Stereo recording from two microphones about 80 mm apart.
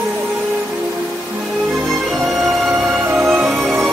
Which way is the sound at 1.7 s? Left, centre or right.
Centre.